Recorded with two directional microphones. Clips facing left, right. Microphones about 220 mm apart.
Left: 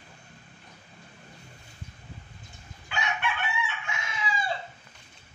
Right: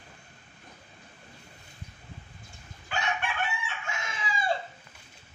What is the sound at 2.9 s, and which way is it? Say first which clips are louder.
Chicken: even; 45° right (ahead or behind).